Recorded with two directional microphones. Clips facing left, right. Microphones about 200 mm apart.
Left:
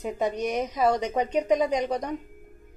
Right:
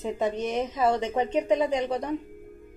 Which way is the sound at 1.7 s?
40° left (ahead or behind).